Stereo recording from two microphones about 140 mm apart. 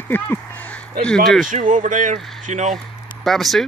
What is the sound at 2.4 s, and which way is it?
Speech, 55° right (ahead or behind).